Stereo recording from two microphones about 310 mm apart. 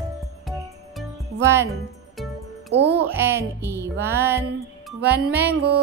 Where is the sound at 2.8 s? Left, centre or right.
Right.